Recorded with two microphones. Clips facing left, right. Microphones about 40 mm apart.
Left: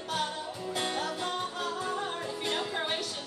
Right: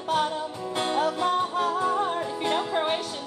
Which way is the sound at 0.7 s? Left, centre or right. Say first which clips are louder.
Right 8 dB; right.